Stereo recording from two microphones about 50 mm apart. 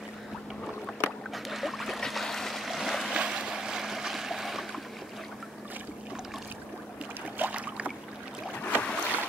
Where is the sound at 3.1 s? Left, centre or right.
Centre.